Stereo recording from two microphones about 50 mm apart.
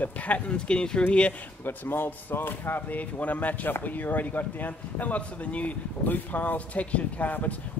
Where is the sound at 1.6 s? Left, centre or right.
Left.